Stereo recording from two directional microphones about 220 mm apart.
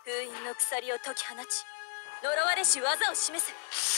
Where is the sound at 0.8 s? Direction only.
45° left (ahead or behind).